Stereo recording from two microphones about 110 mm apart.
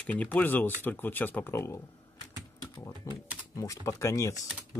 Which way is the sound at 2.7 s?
30° left (ahead or behind).